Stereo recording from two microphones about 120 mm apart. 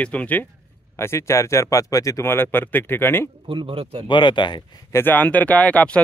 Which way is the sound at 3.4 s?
45° right (ahead or behind).